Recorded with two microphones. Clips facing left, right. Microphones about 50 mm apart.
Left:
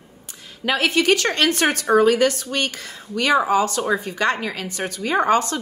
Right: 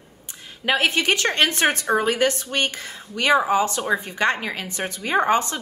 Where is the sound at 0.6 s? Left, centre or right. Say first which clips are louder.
Left 2 dB; right.